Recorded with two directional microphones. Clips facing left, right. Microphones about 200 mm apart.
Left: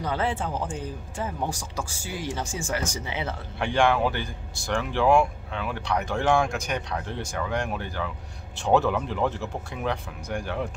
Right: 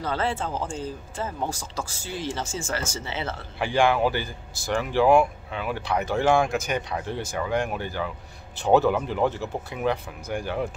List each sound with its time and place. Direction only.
0.0 s speech: 15° left (ahead or behind)
3.5 s speech: centre (ahead or behind)